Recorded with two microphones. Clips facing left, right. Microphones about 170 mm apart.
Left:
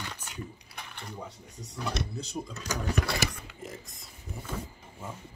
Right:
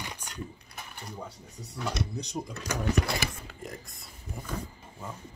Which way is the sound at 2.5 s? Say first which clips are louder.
Right 1 dB; 60° right (ahead or behind).